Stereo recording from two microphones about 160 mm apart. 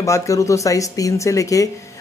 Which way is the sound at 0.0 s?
20° left (ahead or behind).